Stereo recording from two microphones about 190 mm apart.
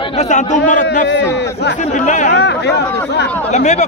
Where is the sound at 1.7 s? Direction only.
40° left (ahead or behind).